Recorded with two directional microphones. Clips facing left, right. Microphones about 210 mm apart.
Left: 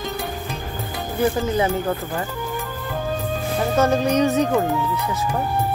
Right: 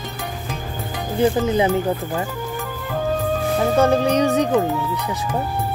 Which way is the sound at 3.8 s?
15° right (ahead or behind).